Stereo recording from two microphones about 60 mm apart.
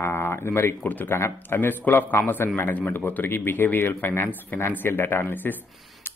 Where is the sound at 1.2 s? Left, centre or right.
Left.